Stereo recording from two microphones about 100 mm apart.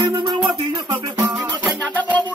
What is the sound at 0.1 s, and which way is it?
Music, 45° right (ahead or behind).